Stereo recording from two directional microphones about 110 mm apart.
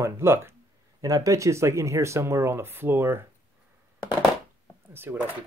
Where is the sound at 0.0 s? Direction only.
20° right (ahead or behind).